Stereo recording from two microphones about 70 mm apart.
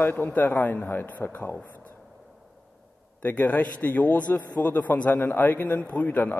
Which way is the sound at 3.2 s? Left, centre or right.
Left.